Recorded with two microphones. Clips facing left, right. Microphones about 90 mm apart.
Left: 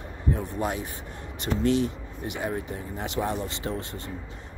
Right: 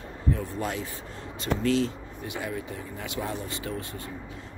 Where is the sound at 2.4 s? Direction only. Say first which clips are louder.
Left 3 dB; 25° left (ahead or behind).